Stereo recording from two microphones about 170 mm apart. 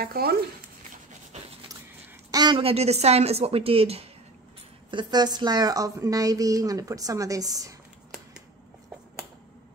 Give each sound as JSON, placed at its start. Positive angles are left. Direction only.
{"t": 0.0, "sound": "speech", "side_deg": -65}
{"t": 2.3, "sound": "a woman's voice", "side_deg": -25}
{"t": 4.9, "sound": "a woman's voice", "side_deg": -25}